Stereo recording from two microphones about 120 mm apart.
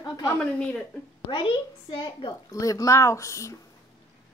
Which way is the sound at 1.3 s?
45° left (ahead or behind).